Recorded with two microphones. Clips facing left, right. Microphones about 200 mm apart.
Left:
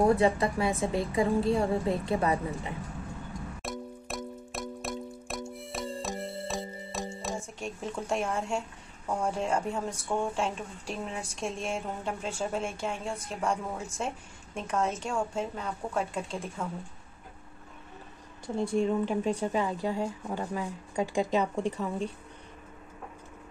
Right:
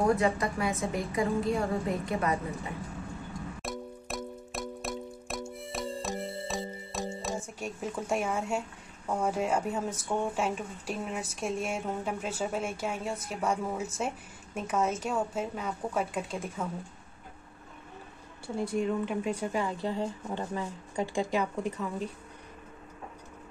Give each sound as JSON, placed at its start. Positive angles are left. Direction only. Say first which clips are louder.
{"t": 0.0, "sound": "a woman's voice", "louder": "left 3 dB", "side_deg": 30}
{"t": 3.6, "sound": "music", "louder": "even", "side_deg": 0}
{"t": 7.5, "sound": "speech", "louder": "even", "side_deg": -5}
{"t": 18.8, "sound": "a woman's voice", "louder": "left 3 dB", "side_deg": 35}
{"t": 19.5, "sound": "speech", "louder": "left 2 dB", "side_deg": 15}
{"t": 21.4, "sound": "a woman's voice", "louder": "left 2 dB", "side_deg": 30}